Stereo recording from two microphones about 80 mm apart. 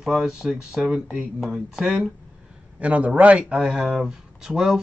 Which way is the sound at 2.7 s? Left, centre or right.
Centre.